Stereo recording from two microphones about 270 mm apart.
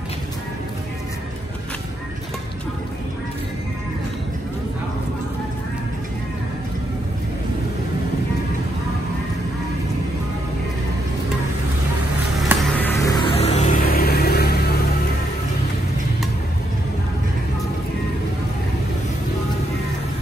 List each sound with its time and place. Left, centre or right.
12.4 s music: centre; by 14.7 s left